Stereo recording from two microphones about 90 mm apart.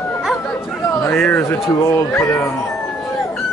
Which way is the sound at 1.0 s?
25° left (ahead or behind).